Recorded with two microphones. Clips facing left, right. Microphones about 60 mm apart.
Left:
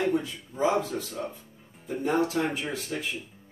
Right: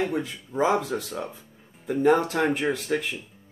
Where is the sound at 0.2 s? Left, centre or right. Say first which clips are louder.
Right 3 dB; right.